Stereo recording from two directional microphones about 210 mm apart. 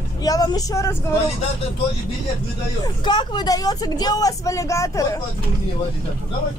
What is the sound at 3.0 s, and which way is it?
Speech, 20° left (ahead or behind).